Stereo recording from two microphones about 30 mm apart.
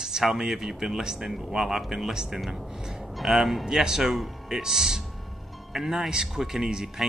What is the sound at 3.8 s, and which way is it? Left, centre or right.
Speech, right.